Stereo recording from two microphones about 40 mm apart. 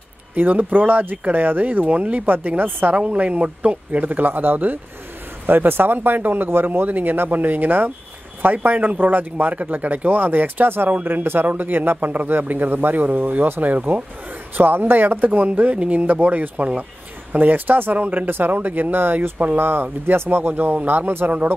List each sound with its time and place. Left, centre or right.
0.4 s speech: right
1.9 s speech: right
2.3 s speech: right
3.0 s speech: right
4.3 s speech: right
14.6 s speech: right
15.4 s speech: right
17.3 s speech: right
17.9 s speech: right
18.2 s speech: right
18.5 s speech: right
21.3 s speech: right